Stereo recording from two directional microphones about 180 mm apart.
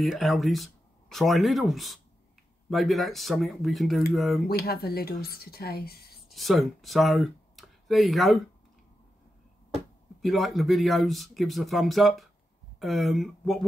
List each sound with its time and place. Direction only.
0.0 s speech: centre (ahead or behind)
4.5 s speech: 60° left (ahead or behind)
6.3 s speech: centre (ahead or behind)
10.2 s speech: centre (ahead or behind)